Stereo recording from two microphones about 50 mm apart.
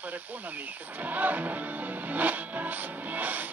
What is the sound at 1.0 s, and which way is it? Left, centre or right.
Music, right.